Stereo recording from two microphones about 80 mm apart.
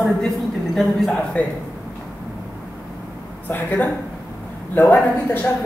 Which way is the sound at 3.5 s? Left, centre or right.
Left.